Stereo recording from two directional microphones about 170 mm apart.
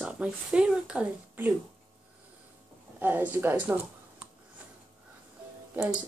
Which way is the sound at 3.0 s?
10° right (ahead or behind).